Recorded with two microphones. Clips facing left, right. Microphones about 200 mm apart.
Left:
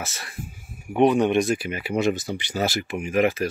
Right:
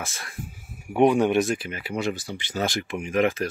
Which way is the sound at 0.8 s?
10° right (ahead or behind).